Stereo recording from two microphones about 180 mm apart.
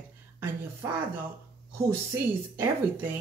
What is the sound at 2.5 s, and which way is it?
Speech, 15° right (ahead or behind).